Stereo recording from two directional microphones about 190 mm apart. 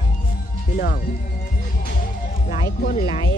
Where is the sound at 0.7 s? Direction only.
50° left (ahead or behind).